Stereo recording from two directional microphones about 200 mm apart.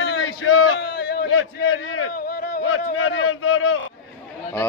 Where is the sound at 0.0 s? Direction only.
70° left (ahead or behind); by 1.2 s 50° left (ahead or behind).